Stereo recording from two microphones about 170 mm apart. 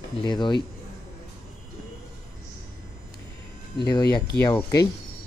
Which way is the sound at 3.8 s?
25° left (ahead or behind).